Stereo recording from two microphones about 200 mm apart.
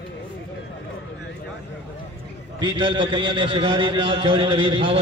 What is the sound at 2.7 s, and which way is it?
A man's voice, 25° right (ahead or behind).